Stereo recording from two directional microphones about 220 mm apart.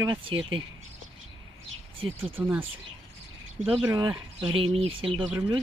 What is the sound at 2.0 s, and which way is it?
Speech, 25° right (ahead or behind).